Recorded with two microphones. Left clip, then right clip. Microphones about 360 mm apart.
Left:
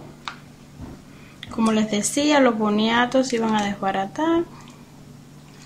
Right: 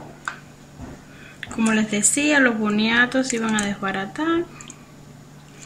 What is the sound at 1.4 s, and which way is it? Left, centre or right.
Speech, centre.